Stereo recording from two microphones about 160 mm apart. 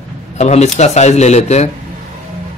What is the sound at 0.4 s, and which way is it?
Speech, 45° left (ahead or behind).